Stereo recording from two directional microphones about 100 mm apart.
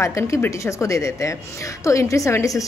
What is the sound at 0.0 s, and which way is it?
A woman's voice, 30° left (ahead or behind).